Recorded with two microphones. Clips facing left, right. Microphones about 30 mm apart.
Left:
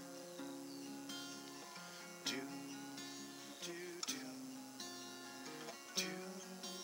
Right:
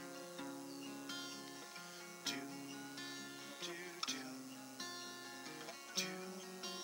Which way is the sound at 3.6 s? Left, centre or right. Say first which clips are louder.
Even; centre.